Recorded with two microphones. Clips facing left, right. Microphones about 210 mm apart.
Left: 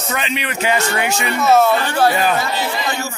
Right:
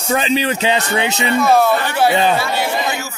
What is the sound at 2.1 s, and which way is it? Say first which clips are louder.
Speech: right 2 dB; 25° right (ahead or behind).